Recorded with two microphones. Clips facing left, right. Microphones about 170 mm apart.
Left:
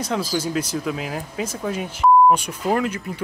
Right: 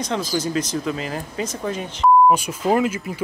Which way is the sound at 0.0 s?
5° left (ahead or behind).